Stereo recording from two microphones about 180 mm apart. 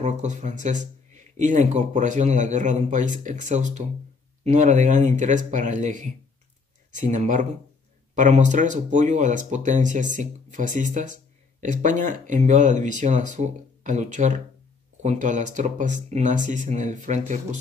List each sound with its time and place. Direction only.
0.0 s speech: 40° right (ahead or behind)